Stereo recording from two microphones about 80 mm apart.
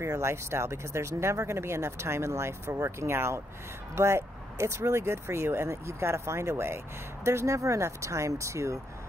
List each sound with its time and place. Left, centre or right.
0.0 s speech: right